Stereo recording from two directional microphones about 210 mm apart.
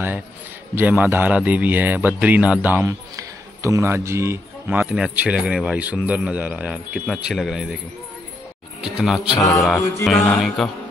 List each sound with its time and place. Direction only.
0.7 s speech: 10° right (ahead or behind)
7.2 s mantra: centre (ahead or behind)
8.8 s mantra: centre (ahead or behind)
9.4 s mantra: 15° left (ahead or behind)
10.0 s mantra: centre (ahead or behind)